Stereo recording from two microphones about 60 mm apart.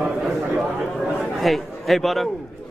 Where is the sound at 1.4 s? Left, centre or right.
Centre.